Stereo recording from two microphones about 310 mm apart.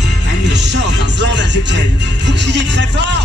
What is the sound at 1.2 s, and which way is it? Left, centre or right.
Music, right.